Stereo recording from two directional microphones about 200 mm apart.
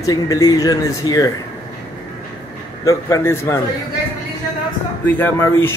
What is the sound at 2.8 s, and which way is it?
Speech, 15° left (ahead or behind).